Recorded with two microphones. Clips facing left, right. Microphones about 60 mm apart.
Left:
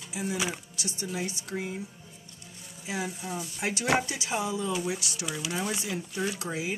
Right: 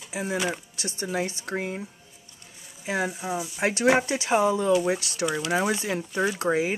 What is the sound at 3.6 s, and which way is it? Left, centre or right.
Speech, right.